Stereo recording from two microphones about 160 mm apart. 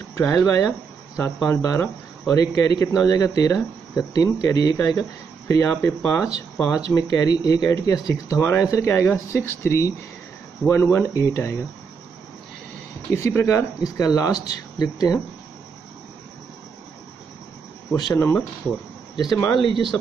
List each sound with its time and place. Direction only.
0.1 s speech: 20° left (ahead or behind)
13.1 s speech: 15° left (ahead or behind)
18.0 s speech: 20° left (ahead or behind)